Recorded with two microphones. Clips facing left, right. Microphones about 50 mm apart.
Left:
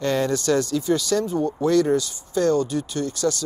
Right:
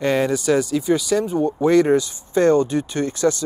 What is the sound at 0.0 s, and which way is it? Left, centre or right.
Speech, centre.